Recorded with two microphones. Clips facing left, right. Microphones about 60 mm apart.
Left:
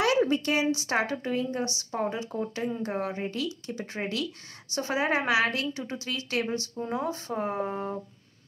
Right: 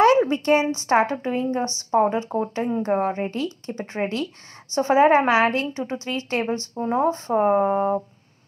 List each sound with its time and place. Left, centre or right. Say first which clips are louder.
0.0 s a woman's voice: right 7 dB; right